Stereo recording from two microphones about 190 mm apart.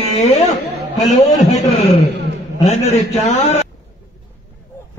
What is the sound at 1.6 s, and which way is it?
A man's voice, 35° left (ahead or behind).